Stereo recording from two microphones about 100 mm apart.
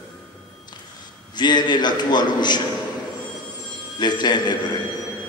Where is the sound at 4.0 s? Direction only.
45° left (ahead or behind).